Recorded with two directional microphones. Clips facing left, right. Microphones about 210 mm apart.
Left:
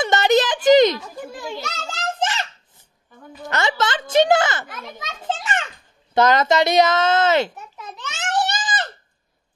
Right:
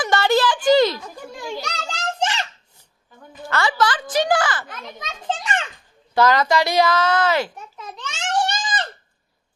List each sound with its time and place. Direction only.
0.0 s a sound: 20° left (ahead or behind)
1.3 s children playing: centre (ahead or behind)
3.4 s a woman's voice: 20° left (ahead or behind)
4.6 s children playing: 10° left (ahead or behind)
6.1 s a woman's voice: 20° left (ahead or behind)
7.5 s a sound: 5° left (ahead or behind)